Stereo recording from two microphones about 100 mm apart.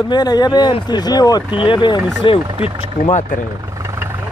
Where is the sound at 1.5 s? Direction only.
55° left (ahead or behind).